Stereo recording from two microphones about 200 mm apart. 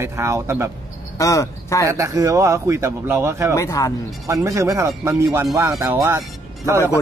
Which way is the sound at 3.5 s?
15° left (ahead or behind).